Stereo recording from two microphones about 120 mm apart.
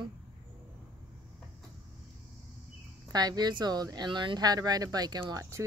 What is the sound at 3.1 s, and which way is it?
Speech, 35° right (ahead or behind).